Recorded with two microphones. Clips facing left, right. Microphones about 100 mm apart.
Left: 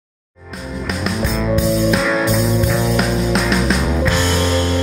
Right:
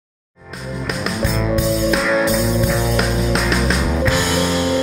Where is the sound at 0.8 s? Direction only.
Centre (ahead or behind).